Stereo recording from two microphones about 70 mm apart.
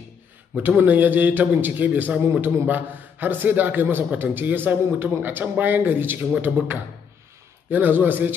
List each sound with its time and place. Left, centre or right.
0.6 s a man's voice: right